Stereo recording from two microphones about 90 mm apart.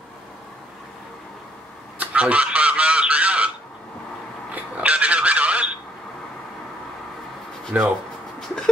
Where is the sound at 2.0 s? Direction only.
15° right (ahead or behind).